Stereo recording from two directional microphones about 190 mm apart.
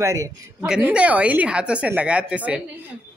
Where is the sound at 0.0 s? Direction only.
15° right (ahead or behind).